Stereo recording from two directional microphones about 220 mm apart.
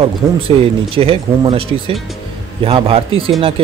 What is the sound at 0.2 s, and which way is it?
Speech, 10° right (ahead or behind).